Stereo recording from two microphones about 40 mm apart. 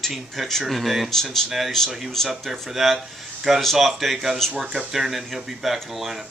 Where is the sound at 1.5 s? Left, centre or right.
Centre.